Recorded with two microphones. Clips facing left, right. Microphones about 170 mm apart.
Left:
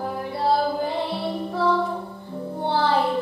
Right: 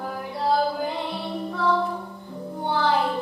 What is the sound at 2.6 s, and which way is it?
Music, 30° left (ahead or behind).